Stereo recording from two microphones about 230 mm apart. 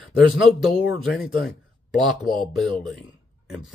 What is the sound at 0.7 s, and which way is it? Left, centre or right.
Speech, centre.